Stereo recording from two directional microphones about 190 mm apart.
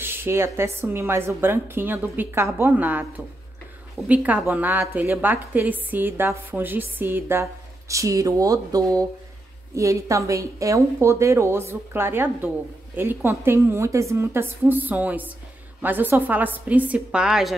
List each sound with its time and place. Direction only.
0.0 s a woman's voice: 10° right (ahead or behind)
4.1 s a woman's voice: 10° right (ahead or behind)